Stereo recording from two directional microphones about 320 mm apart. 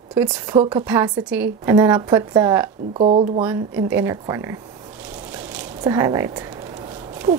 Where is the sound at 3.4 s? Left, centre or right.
Centre.